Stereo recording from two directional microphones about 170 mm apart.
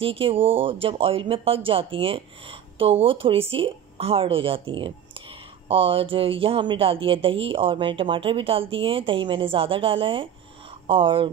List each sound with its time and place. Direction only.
0.0 s speech: 30° right (ahead or behind)